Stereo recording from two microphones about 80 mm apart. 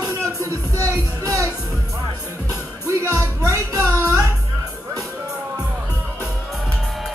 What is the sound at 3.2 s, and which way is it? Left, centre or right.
Music, right.